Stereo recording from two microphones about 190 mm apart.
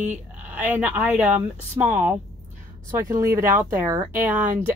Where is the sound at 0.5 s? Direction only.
10° right (ahead or behind).